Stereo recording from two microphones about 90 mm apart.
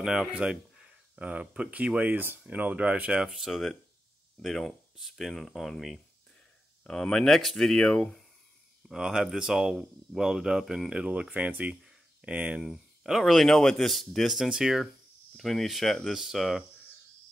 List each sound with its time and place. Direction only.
0.0 s speech: 5° right (ahead or behind)
8.8 s speech: 5° right (ahead or behind)